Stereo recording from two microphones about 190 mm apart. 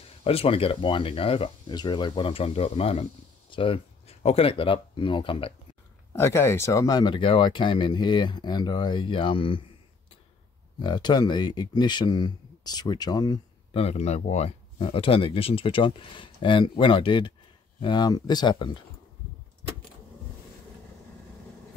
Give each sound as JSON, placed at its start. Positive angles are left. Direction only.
{"t": 0.2, "sound": "speech", "side_deg": 30}
{"t": 6.1, "sound": "speech", "side_deg": 15}
{"t": 10.8, "sound": "speech", "side_deg": 25}
{"t": 13.8, "sound": "speech", "side_deg": 35}